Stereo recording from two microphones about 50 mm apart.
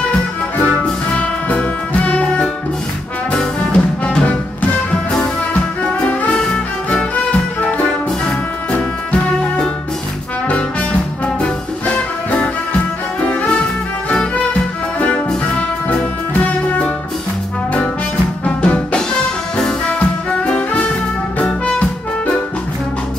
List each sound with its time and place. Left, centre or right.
0.8 s music: left
5.9 s music: left
10.5 s music: left
13.2 s music: left
18.4 s music: left